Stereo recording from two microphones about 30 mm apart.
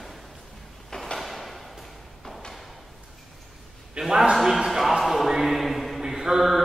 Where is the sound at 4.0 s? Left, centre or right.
Right.